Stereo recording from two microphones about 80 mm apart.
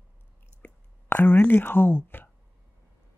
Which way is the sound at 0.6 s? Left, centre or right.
Left.